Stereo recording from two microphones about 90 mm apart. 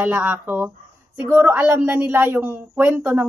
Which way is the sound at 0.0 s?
20° right (ahead or behind).